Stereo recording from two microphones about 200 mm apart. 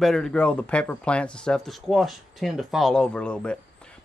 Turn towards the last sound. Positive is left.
turn(degrees=5)  # may be behind; listen again after turning